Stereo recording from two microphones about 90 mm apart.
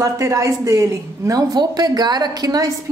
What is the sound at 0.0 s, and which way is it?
A woman's voice, 35° right (ahead or behind).